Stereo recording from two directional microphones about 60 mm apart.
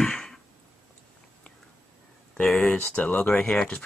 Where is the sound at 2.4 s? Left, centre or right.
Centre.